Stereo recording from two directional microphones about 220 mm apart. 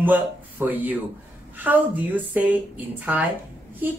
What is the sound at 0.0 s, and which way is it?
Speech, 10° right (ahead or behind).